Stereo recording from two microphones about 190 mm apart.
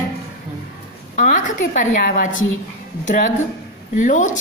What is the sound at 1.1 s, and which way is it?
A woman's voice, 40° left (ahead or behind).